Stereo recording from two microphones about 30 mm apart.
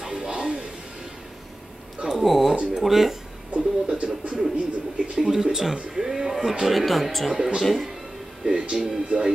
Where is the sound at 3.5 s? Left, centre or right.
Right.